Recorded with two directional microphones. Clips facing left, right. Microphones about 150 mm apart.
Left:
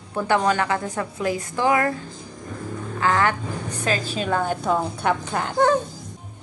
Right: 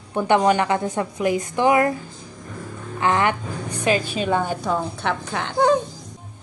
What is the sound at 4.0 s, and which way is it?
Speech, 35° left (ahead or behind).